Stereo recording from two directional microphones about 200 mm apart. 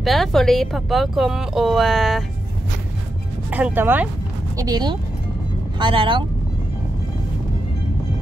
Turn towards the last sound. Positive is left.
turn(degrees=-25)  # may be behind; listen again after turning